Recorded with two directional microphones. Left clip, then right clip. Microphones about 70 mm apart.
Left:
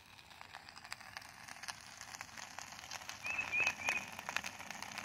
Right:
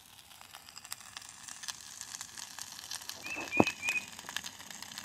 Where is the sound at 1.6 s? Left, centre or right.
Centre.